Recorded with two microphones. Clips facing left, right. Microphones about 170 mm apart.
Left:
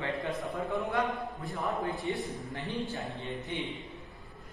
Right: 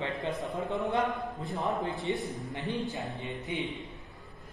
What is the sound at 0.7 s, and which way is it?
Speech, 20° right (ahead or behind).